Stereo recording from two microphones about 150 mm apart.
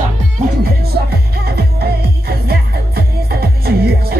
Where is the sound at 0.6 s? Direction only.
90° right.